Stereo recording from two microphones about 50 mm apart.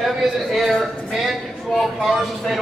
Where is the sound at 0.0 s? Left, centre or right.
Centre.